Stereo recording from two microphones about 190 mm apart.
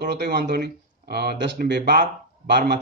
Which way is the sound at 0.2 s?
60° right (ahead or behind).